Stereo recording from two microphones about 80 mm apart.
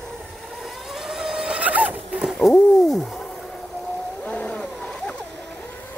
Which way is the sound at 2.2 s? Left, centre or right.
Centre.